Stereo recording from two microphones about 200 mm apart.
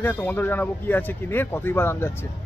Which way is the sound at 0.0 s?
10° left (ahead or behind).